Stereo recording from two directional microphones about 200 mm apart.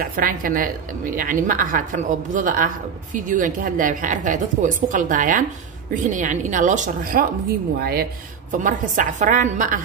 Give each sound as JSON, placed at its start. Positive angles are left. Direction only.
{"t": 0.0, "sound": "a woman's voice", "side_deg": -45}